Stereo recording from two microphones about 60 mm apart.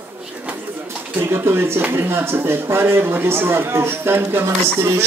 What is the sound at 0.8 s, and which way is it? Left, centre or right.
A man's voice, right.